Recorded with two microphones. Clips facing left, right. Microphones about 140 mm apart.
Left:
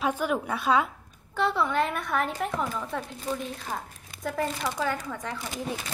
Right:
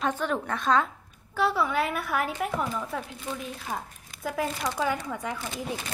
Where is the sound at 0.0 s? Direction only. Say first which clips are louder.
Left 1 dB; 10° left (ahead or behind).